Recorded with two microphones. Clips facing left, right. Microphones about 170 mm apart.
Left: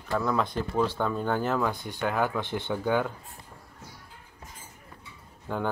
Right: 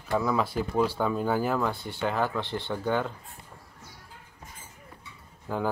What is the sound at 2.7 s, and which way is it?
Speech, 5° left (ahead or behind).